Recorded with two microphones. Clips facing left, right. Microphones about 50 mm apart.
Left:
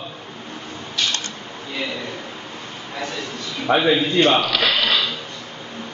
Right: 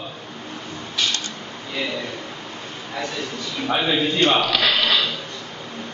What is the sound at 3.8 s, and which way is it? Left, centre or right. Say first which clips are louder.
Speech: left 1 dB; centre.